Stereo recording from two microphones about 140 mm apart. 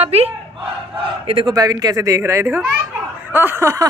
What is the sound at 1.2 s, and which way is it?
Speech, 35° right (ahead or behind).